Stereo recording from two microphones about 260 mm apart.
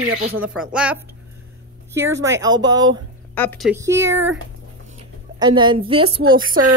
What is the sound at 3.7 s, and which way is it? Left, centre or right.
Speech, centre.